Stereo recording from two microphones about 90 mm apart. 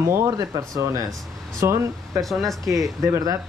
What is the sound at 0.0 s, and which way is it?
Speech, 30° right (ahead or behind).